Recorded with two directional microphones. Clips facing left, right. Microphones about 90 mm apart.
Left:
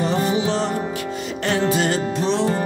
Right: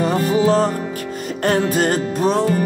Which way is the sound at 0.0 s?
45° right (ahead or behind).